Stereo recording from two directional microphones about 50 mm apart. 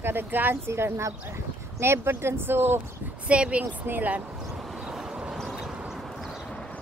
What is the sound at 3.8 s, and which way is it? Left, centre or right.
Speech, right.